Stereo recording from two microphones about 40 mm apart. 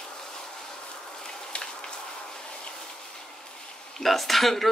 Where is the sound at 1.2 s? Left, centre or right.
Centre.